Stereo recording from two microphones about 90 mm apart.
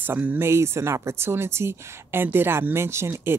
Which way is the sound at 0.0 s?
20° right (ahead or behind).